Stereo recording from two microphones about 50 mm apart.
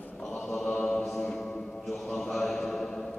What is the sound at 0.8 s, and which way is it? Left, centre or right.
Mantra, centre.